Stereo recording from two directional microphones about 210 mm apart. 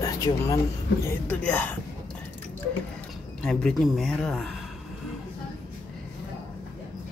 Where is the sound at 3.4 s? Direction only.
5° left (ahead or behind).